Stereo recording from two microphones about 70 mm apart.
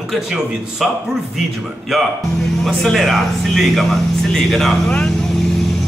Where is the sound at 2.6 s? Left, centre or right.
Centre.